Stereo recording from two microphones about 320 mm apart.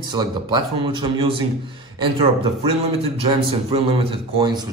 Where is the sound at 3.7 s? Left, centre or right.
Centre.